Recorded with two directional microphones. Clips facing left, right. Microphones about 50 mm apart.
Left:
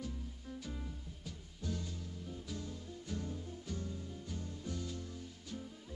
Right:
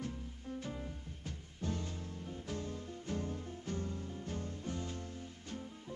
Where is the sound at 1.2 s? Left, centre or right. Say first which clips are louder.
Right 3 dB; right.